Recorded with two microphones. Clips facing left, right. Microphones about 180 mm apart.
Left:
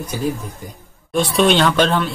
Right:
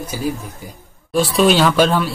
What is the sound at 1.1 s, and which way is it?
Speech, centre (ahead or behind).